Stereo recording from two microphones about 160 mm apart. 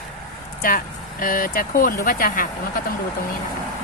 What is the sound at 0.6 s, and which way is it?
Speech, 65° left (ahead or behind).